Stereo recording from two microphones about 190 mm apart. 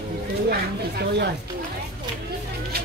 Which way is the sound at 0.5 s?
60° right (ahead or behind).